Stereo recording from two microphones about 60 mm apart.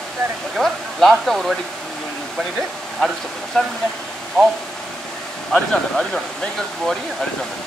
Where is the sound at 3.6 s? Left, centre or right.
Centre.